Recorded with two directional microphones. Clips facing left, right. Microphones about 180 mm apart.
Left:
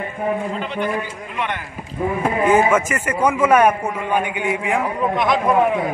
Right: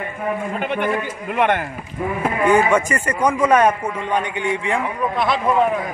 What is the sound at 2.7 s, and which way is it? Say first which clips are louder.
A man's voice: even; 5° left (ahead or behind).